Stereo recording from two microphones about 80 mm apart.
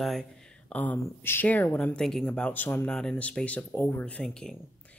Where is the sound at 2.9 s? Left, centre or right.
Centre.